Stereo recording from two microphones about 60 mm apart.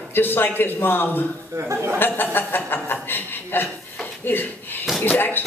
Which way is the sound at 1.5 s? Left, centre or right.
Right.